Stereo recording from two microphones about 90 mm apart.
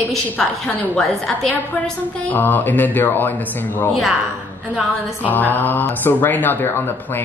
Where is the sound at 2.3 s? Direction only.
20° left (ahead or behind).